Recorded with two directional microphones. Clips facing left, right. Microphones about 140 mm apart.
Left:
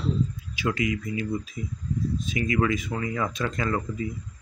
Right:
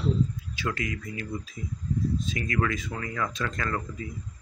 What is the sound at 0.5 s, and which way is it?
Speech, 15° left (ahead or behind).